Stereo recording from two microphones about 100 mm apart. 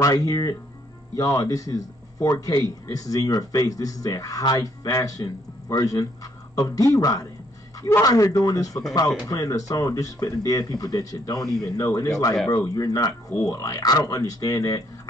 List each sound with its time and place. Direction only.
0.0 s speech: 35° left (ahead or behind)